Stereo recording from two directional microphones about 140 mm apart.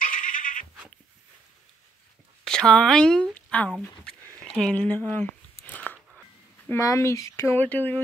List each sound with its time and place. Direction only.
0.0 s goat: 75° left (ahead or behind)
2.4 s speech: 5° left (ahead or behind)
3.8 s a sound: 5° left (ahead or behind)
6.7 s speech: 20° left (ahead or behind)